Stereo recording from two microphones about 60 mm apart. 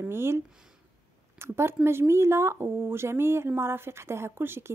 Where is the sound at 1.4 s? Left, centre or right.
Right.